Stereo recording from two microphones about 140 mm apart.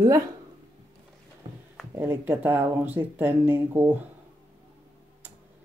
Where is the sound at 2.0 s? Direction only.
15° right (ahead or behind).